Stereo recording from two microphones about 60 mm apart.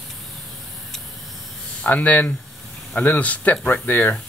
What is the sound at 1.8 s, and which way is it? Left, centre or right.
Speech, left.